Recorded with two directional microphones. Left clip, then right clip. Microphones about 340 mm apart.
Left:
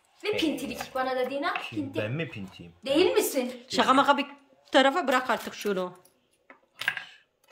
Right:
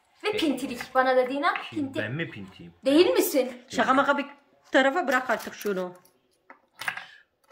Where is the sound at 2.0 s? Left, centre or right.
Left.